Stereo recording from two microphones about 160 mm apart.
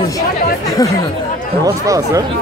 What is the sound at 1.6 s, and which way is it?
Speech, 20° right (ahead or behind).